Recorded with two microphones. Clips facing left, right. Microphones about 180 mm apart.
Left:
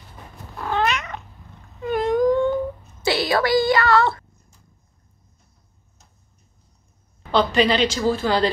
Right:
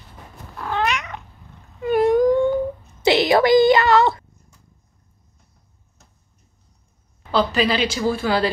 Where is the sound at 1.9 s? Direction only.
10° right (ahead or behind).